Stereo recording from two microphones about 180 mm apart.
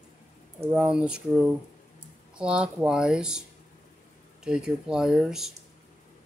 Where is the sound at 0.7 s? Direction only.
5° right (ahead or behind).